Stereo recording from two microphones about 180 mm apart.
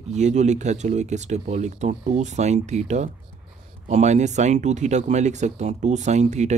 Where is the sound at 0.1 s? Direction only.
40° right (ahead or behind).